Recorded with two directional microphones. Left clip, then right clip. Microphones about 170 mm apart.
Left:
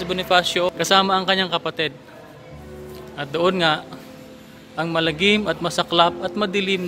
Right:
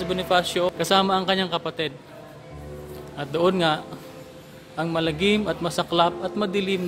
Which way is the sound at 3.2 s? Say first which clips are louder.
Left 2 dB; 20° right (ahead or behind).